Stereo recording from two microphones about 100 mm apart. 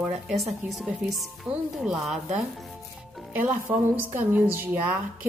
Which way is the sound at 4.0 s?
20° right (ahead or behind).